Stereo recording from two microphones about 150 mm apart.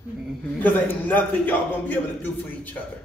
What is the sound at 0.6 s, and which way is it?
A man's voice, 10° left (ahead or behind).